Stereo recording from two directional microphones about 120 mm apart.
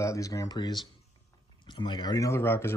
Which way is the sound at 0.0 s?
25° left (ahead or behind).